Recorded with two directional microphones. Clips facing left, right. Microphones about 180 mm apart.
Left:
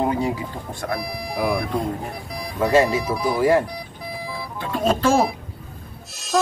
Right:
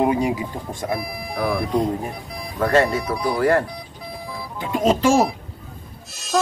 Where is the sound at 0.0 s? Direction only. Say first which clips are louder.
Right 3 dB; 15° right (ahead or behind).